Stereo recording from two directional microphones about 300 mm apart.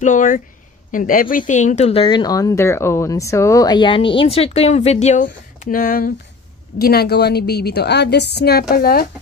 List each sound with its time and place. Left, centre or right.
0.0 s a woman's voice: left